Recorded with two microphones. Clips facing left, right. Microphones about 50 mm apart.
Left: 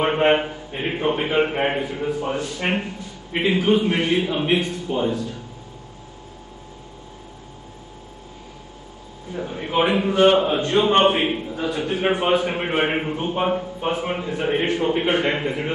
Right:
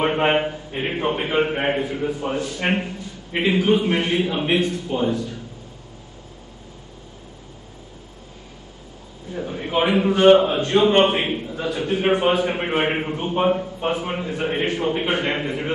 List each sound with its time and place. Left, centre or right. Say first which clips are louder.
0.2 s a man's voice: left 1 dB; centre
9.3 s a sound: even; centre
10.1 s a man's voice: right 3 dB; centre